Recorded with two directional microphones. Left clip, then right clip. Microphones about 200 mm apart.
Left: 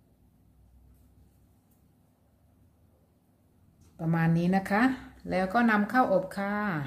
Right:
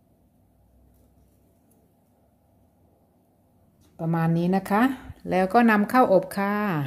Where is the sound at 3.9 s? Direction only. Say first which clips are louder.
Right 4 dB; 20° right (ahead or behind).